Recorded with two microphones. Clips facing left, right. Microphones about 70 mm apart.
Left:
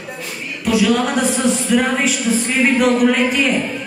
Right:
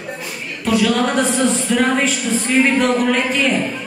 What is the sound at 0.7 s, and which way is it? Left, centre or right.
Speech, centre.